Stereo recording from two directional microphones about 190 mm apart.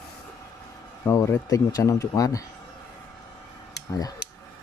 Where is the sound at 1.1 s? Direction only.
15° left (ahead or behind).